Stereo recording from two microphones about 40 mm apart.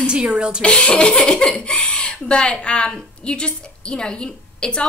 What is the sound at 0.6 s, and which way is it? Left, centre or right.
A woman's voice, left.